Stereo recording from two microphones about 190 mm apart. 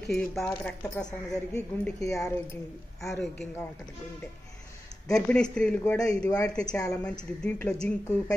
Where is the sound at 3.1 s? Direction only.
5° left (ahead or behind).